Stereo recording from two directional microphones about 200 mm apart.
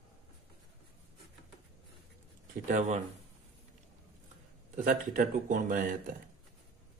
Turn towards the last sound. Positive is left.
turn(degrees=-40)  # may be behind; listen again after turning